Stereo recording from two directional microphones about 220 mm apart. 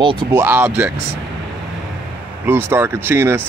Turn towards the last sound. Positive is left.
turn(degrees=-10)  # may be behind; listen again after turning